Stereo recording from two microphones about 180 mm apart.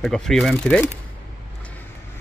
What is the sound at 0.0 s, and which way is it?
Speech, centre (ahead or behind).